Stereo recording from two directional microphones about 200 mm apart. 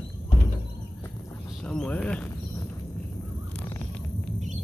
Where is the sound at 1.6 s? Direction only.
5° left (ahead or behind).